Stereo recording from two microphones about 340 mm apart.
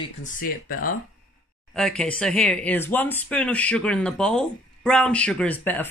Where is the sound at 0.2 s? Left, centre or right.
Left.